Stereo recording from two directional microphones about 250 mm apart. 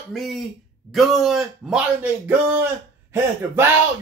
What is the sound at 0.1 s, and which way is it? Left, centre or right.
Speech, centre.